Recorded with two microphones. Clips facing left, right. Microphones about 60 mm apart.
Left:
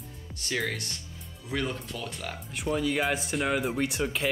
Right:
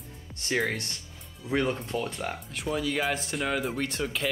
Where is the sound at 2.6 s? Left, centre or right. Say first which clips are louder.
Left 1 dB; centre.